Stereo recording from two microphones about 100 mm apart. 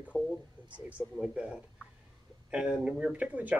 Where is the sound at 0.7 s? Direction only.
15° right (ahead or behind).